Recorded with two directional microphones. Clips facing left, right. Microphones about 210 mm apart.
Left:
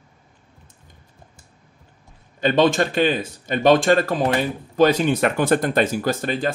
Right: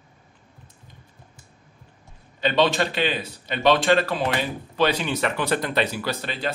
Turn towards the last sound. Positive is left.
turn(degrees=45)  # may be behind; listen again after turning